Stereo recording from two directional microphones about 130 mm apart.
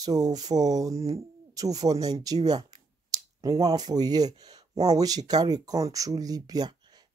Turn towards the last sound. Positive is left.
turn(degrees=-30)  # may be behind; listen again after turning